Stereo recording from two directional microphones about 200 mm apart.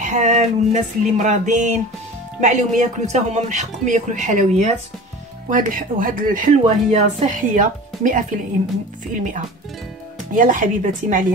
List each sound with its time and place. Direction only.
0.0 s speech: 35° right (ahead or behind)